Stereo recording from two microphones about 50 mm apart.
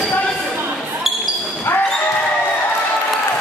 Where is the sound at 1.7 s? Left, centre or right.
Left.